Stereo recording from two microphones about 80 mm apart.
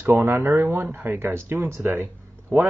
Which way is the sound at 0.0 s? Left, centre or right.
Right.